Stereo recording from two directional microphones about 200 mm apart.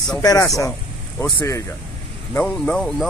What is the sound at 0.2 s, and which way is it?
Speech, 20° left (ahead or behind).